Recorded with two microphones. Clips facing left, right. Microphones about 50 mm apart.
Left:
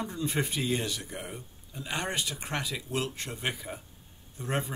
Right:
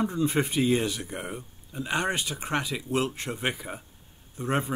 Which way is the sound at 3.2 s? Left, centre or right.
Right.